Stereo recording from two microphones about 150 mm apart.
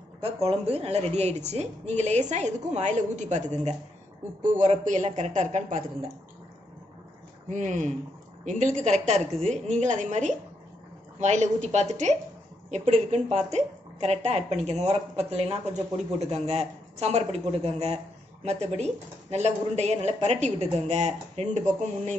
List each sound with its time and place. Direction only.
0.2 s a woman's voice: 40° right (ahead or behind)
7.4 s a woman's voice: 55° right (ahead or behind)